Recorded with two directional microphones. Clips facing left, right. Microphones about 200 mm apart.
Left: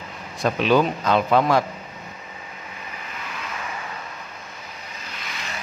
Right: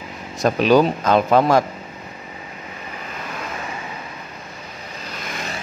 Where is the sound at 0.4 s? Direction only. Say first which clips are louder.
Right 4 dB; 40° right (ahead or behind).